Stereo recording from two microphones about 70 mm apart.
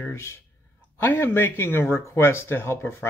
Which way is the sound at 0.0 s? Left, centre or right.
Left.